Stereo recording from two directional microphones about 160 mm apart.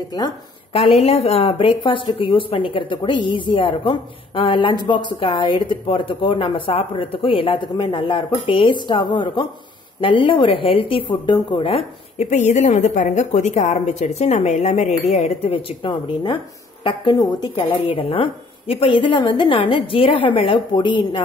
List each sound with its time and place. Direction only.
0.7 s a woman's voice: 40° left (ahead or behind)